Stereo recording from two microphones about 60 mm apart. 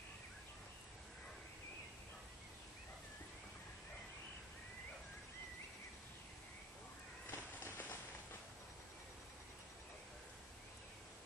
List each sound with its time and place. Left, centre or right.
7.2 s run: left